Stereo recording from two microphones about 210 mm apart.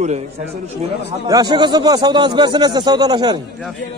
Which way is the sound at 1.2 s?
20° right (ahead or behind).